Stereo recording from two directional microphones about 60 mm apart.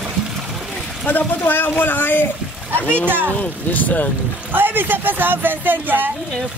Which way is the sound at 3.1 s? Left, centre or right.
Right.